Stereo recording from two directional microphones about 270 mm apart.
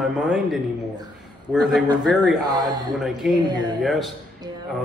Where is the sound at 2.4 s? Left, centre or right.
Centre.